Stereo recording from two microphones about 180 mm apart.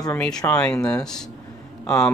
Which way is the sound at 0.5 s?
5° left (ahead or behind).